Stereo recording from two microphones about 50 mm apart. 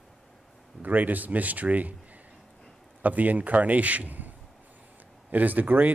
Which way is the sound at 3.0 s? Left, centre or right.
Right.